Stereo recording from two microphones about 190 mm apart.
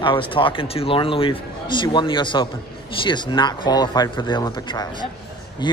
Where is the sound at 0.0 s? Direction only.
25° left (ahead or behind).